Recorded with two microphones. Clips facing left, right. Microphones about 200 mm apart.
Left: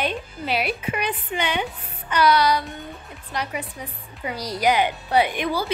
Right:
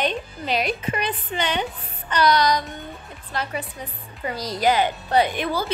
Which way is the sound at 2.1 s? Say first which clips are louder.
Even; 10° left (ahead or behind).